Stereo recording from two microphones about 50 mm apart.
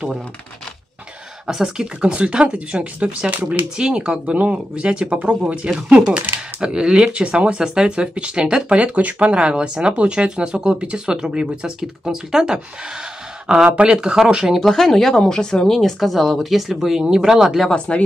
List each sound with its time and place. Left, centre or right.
1.5 s speech: centre
2.0 s speech: right
14.6 s speech: centre
17.7 s speech: left